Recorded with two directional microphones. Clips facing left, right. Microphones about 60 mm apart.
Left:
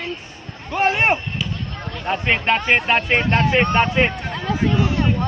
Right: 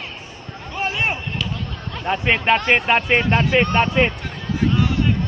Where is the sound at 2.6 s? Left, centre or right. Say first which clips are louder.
Even; centre.